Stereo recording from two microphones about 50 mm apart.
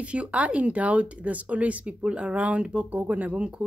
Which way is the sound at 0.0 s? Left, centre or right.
Right.